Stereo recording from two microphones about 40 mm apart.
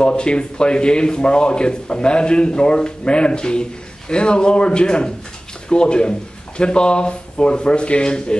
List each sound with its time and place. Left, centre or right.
0.0 s speech: left